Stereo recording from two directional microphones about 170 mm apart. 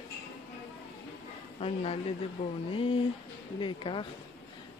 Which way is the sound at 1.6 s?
35° left (ahead or behind).